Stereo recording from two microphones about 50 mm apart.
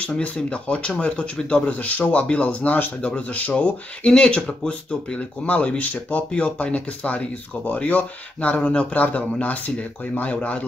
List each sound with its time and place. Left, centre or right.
0.0 s speech: left